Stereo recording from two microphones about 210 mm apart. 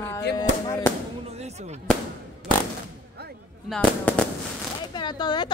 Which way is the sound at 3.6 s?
5° left (ahead or behind).